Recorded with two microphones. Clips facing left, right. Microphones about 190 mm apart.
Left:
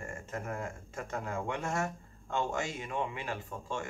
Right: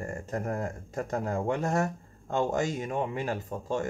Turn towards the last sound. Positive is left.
turn(degrees=-40)  # may be behind; listen again after turning